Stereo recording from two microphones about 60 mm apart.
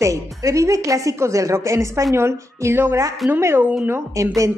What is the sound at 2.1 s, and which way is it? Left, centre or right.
Speech, right.